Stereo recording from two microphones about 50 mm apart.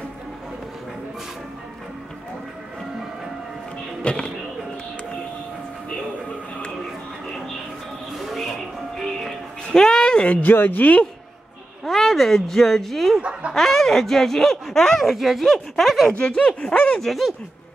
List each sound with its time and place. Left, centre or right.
4.0 s speech: left
8.1 s music: centre
9.7 s a sound: centre
10.4 s speech: left
11.8 s a sound: centre
13.2 s speech: right
13.5 s speech: centre
15.0 s speech: centre
16.1 s speech: left
17.0 s speech: centre